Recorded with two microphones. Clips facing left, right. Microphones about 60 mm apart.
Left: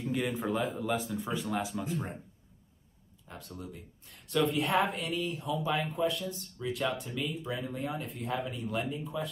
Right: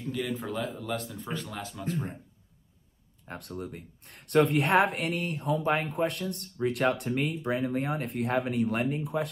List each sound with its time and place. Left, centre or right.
0.0 s speech: centre
0.4 s speech: centre
3.3 s speech: right
8.8 s speech: right